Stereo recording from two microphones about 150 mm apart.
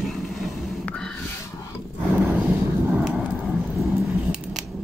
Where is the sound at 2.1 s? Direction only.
10° right (ahead or behind).